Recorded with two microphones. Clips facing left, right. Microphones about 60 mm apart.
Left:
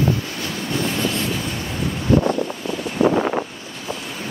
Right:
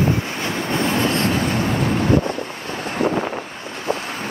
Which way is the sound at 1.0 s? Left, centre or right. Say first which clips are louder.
Right 4 dB; right.